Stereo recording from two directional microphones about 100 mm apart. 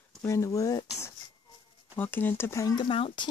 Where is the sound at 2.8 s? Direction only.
60° left (ahead or behind).